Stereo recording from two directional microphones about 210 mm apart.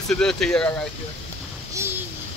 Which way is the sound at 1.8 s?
15° right (ahead or behind).